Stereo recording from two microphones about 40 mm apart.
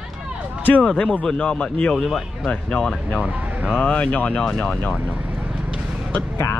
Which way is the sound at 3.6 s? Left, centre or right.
Left.